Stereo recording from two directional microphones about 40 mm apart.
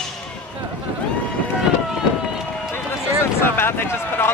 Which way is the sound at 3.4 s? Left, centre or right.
Left.